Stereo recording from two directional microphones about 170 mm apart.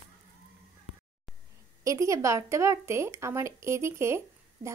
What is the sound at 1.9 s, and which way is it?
A woman's voice, 20° right (ahead or behind).